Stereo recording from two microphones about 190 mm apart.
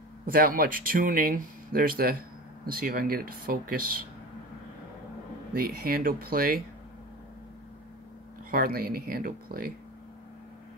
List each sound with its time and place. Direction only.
0.3 s speech: 50° right (ahead or behind)
5.5 s speech: 50° right (ahead or behind)
8.5 s speech: 50° right (ahead or behind)